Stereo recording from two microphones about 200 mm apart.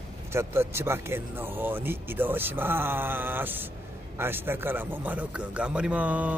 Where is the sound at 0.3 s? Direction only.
15° right (ahead or behind).